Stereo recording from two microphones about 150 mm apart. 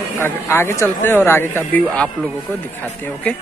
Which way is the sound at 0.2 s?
15° left (ahead or behind).